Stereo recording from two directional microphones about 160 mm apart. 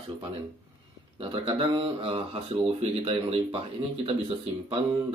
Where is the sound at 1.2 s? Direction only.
35° right (ahead or behind).